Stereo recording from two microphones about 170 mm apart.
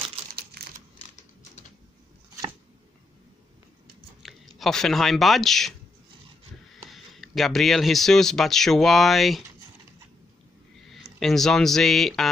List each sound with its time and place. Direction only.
0.3 s typing: 65° right (ahead or behind)
4.2 s speech: centre (ahead or behind)
6.9 s speech: centre (ahead or behind)
10.9 s speech: centre (ahead or behind)